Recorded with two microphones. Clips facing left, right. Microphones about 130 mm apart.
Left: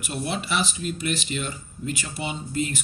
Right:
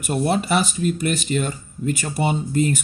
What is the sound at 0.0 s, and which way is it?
Speech, 45° right (ahead or behind).